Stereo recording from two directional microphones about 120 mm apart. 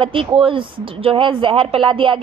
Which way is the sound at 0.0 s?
50° right (ahead or behind).